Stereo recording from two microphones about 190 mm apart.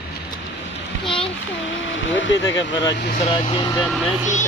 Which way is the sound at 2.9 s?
60° left (ahead or behind).